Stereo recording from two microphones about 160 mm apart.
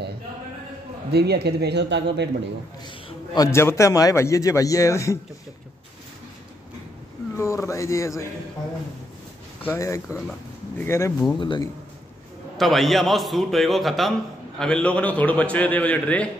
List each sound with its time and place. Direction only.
1.1 s speech: 90° right
3.3 s a man's voice: 15° left (ahead or behind)
7.3 s a man's voice: 15° left (ahead or behind)
9.7 s a man's voice: 20° left (ahead or behind)
10.0 s a man's voice: centre (ahead or behind)
10.8 s a man's voice: 15° left (ahead or behind)
11.3 s a man's voice: 30° left (ahead or behind)
12.5 s a man's voice: centre (ahead or behind)